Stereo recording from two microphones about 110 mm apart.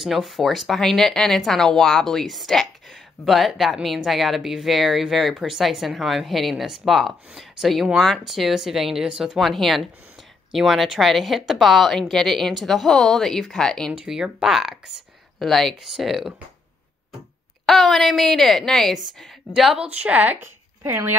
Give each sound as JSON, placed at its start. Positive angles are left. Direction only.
{"t": 0.0, "sound": "speech", "side_deg": 0}
{"t": 13.9, "sound": "speech", "side_deg": -5}
{"t": 17.6, "sound": "a woman's voice", "side_deg": 0}